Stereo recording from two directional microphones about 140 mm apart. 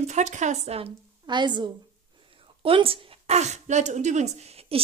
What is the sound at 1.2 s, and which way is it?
A woman's voice, 35° right (ahead or behind).